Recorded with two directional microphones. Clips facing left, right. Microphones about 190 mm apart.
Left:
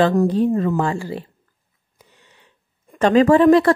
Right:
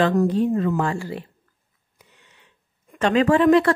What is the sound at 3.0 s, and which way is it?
Speech, 40° left (ahead or behind).